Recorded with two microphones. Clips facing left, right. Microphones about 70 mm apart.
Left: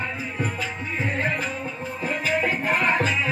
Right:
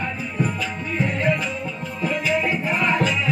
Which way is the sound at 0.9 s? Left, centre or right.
Left.